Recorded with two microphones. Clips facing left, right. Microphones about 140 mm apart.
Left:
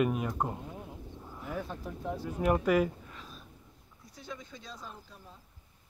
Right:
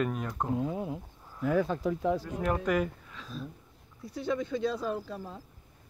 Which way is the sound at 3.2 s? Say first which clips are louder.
Right 8 dB; 90° right.